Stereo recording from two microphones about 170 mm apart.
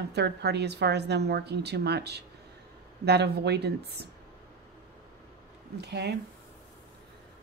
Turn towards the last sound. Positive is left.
turn(degrees=-80)